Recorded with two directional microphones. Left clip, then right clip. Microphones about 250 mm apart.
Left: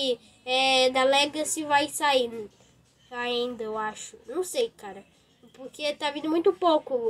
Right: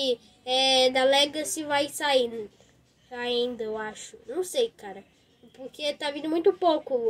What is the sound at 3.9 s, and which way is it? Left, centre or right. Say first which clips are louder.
Speech: left 1 dB; centre.